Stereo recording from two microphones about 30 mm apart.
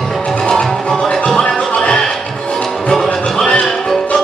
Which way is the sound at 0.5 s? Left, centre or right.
Left.